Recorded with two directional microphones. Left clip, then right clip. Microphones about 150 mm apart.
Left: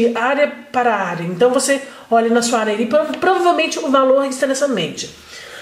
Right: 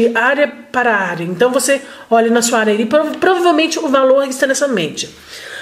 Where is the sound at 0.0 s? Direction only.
30° right (ahead or behind).